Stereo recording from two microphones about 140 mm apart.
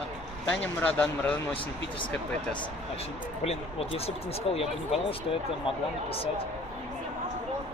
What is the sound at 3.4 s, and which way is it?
Speech, 45° left (ahead or behind).